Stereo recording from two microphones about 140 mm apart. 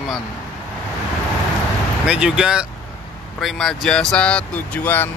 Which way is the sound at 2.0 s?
5° right (ahead or behind).